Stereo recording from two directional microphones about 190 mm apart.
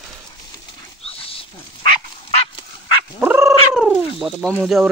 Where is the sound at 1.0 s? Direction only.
30° left (ahead or behind).